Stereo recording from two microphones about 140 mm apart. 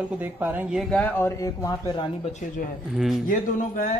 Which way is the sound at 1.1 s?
20° left (ahead or behind).